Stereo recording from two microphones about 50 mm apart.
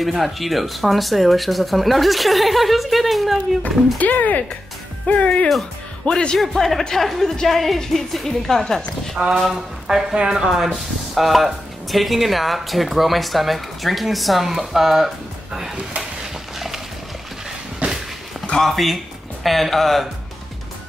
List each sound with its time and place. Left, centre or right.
0.0 s speech: centre
4.0 s a man's voice: left
6.3 s speech: centre
9.2 s speech: centre
16.5 s a sound: centre
17.8 s a sound: right
18.6 s speech: centre